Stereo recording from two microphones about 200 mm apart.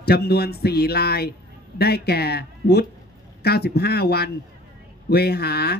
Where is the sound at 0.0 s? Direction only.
55° left (ahead or behind).